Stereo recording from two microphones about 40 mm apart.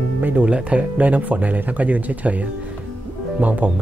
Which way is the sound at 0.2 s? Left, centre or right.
Right.